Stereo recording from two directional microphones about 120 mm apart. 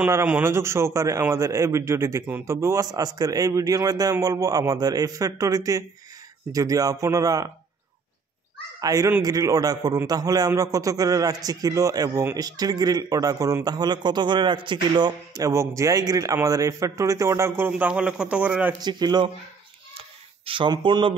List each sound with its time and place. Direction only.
0.3 s a man's voice: 20° right (ahead or behind)
8.8 s a man's voice: 30° right (ahead or behind); by 18.8 s 15° right (ahead or behind)
18.8 s a man's voice: 35° right (ahead or behind)
20.4 s speech: 45° right (ahead or behind)